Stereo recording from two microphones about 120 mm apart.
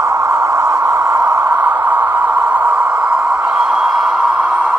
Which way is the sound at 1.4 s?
15° right (ahead or behind).